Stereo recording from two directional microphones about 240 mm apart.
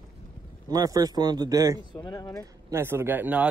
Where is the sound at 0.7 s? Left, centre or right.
Centre.